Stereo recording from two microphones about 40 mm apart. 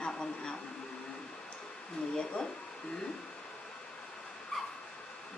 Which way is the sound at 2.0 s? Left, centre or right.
Left.